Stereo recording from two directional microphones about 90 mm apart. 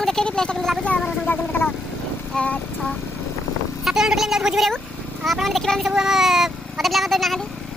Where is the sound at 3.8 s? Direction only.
5° right (ahead or behind).